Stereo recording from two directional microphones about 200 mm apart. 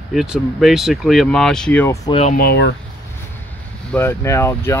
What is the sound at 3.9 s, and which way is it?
Speech, 10° left (ahead or behind).